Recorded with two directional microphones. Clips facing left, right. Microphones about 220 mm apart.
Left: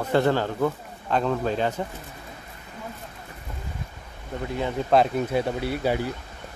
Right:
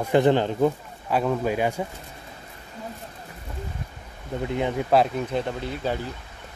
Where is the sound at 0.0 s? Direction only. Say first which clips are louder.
Right 3 dB; 15° right (ahead or behind).